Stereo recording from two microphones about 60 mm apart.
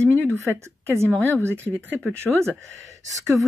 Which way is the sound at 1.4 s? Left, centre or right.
Right.